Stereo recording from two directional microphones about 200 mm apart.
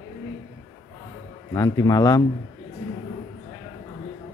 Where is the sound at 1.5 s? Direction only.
15° left (ahead or behind).